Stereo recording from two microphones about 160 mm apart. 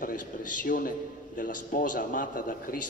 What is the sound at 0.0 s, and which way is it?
A man's voice, 60° left (ahead or behind).